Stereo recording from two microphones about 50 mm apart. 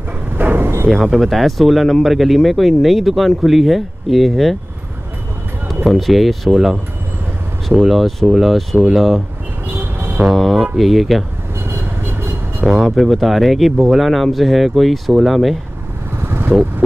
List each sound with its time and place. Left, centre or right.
0.3 s a sound: right
1.0 s speech: centre
5.9 s speech: centre
9.7 s vehicle: right
10.3 s speech: centre
11.6 s vehicle: right
12.8 s speech: centre
14.0 s speech: centre
16.1 s vehicle: right